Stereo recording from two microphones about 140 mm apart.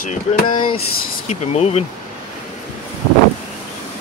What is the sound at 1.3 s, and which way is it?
Speech, 50° left (ahead or behind).